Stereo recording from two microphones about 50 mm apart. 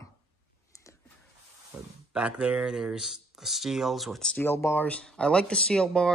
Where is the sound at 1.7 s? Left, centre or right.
Right.